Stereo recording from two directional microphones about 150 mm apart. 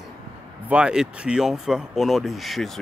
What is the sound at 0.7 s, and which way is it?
Speech, 5° right (ahead or behind).